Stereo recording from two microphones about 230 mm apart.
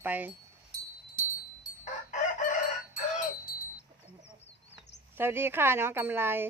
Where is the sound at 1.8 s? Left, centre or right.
Left.